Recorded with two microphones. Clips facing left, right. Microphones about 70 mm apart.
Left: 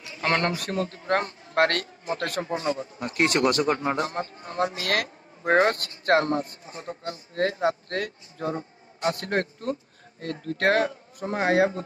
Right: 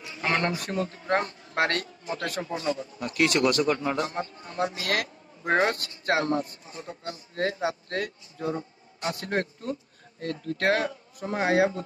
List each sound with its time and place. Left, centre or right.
0.2 s a man's voice: left
0.8 s speech: right
1.5 s a man's voice: left
2.5 s a man's voice: left